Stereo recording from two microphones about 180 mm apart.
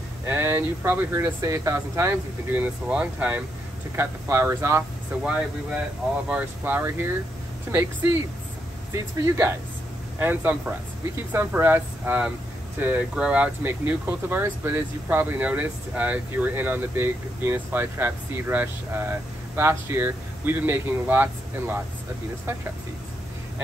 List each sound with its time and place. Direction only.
0.2 s speech: 15° right (ahead or behind)
6.2 s speech: 10° right (ahead or behind)